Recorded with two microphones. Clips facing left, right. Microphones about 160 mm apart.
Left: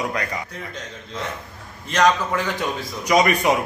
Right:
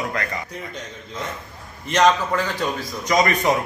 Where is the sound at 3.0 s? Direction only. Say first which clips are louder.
Left 1 dB; 10° left (ahead or behind).